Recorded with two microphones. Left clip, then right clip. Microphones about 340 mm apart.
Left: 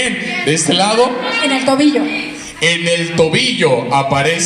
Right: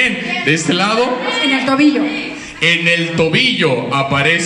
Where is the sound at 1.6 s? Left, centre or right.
Left.